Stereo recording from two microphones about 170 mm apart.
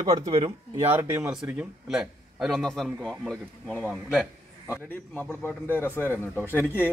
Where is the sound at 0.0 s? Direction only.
30° right (ahead or behind).